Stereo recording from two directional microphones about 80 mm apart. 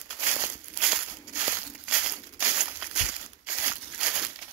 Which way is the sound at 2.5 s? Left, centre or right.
Centre.